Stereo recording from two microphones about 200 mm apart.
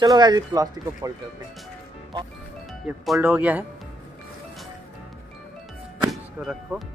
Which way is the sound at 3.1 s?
5° right (ahead or behind).